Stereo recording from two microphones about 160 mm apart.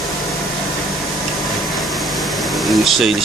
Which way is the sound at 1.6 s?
Centre (ahead or behind).